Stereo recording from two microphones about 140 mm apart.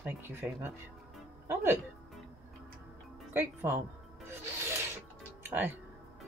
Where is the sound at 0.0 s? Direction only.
15° right (ahead or behind).